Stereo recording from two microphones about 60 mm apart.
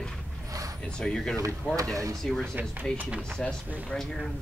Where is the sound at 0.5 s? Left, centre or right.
Right.